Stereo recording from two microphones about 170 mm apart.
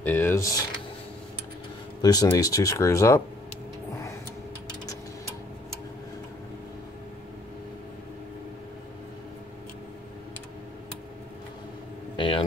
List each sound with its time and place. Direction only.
0.0 s speech: 10° left (ahead or behind)
2.0 s speech: 25° left (ahead or behind)
12.2 s a sound: 30° left (ahead or behind)